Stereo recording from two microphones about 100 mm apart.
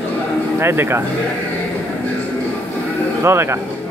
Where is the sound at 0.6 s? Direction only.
25° right (ahead or behind).